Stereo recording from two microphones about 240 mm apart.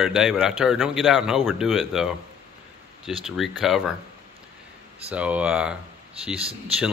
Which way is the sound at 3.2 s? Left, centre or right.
Centre.